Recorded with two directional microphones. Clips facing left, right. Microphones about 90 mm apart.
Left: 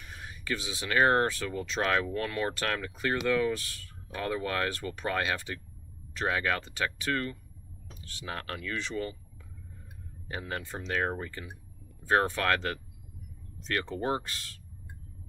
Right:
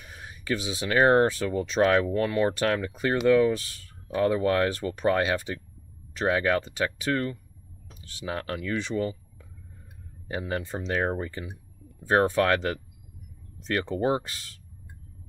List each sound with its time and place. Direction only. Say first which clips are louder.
0.0 s speech: right 1 dB; 15° right (ahead or behind)
8.3 s speech: right 6 dB; 15° right (ahead or behind)
10.2 s speech: right 6 dB; 15° right (ahead or behind)